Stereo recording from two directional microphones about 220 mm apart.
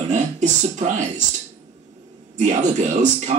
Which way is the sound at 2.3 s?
35° right (ahead or behind).